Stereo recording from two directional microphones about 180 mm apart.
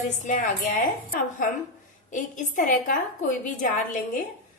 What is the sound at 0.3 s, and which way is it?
A woman's voice, 50° left (ahead or behind).